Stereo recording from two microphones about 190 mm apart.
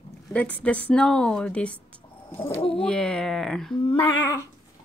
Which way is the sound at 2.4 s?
30° left (ahead or behind).